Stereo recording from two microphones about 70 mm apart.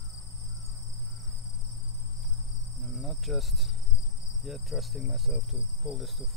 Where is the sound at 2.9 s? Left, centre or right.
Centre.